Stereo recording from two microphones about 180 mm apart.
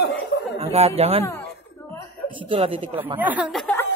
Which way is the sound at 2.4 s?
30° right (ahead or behind).